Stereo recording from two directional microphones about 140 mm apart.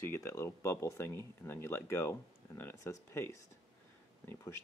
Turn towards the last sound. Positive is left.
turn(degrees=15)  # may be behind; listen again after turning